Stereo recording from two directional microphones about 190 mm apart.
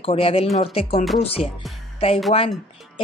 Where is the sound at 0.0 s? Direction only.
30° left (ahead or behind).